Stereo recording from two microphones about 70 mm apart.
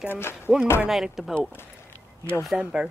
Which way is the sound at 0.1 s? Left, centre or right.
Left.